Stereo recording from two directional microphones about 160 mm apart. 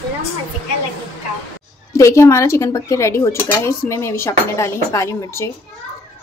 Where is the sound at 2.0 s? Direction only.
20° left (ahead or behind).